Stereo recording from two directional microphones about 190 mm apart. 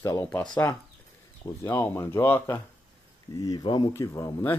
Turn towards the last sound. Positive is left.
turn(degrees=15)  # may be behind; listen again after turning